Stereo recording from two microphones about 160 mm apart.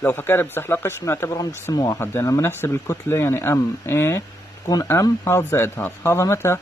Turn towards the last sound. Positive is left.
turn(degrees=15)  # may be behind; listen again after turning